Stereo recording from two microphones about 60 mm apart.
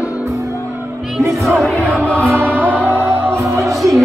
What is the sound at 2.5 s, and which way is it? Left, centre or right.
Music, right.